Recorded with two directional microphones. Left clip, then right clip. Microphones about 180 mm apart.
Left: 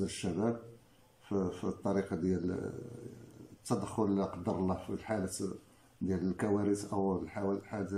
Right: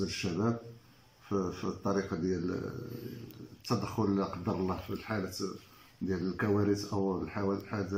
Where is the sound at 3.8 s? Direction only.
20° left (ahead or behind).